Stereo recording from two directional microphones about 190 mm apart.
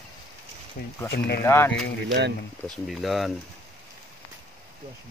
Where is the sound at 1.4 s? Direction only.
15° left (ahead or behind).